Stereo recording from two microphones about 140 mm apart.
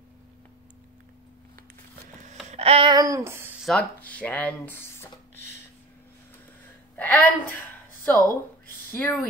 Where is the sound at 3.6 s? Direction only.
10° left (ahead or behind).